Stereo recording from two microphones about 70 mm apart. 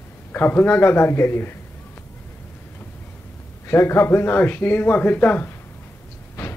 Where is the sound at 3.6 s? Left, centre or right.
Left.